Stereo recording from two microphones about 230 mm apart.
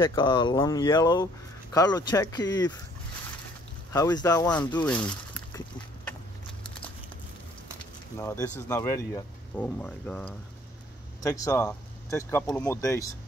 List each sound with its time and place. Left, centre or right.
0.0 s speech: left
3.9 s speech: centre
4.7 s a sound: centre
8.2 s speech: centre